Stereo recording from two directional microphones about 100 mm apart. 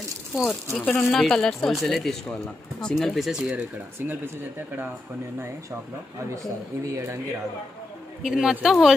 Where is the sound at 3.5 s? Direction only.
20° right (ahead or behind).